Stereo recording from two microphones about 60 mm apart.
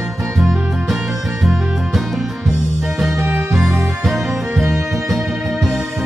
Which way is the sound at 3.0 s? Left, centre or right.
Centre.